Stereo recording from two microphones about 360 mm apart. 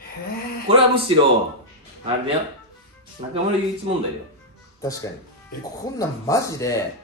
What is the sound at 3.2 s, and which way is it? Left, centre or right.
Speech, centre.